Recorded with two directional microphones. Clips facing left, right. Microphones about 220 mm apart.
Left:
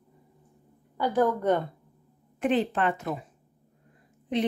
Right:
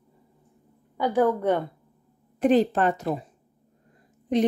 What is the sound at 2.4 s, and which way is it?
Speech, 40° right (ahead or behind).